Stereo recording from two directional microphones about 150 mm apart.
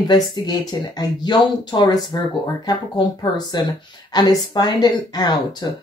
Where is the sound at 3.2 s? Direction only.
25° left (ahead or behind).